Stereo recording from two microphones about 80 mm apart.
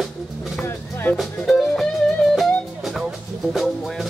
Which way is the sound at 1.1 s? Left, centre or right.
Centre.